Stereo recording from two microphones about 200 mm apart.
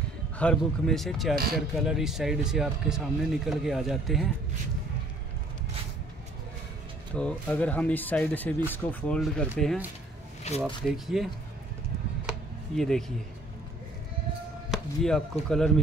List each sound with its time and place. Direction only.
0.4 s speech: 5° left (ahead or behind)
1.3 s speech: 50° right (ahead or behind)
1.8 s speech: centre (ahead or behind)
7.2 s speech: 5° left (ahead or behind)
10.6 s speech: centre (ahead or behind)
12.3 s a sound: centre (ahead or behind)
14.7 s speech: 5° left (ahead or behind)